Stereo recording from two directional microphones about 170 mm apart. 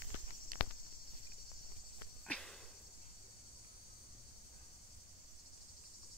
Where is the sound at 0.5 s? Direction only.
55° right (ahead or behind).